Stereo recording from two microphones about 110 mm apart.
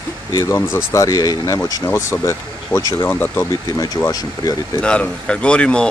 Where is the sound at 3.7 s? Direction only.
35° left (ahead or behind).